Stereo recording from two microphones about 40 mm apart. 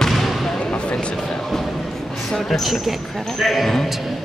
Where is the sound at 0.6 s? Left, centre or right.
Left.